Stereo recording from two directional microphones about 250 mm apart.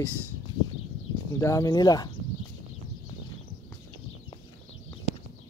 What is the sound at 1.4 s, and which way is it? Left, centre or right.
Speech, centre.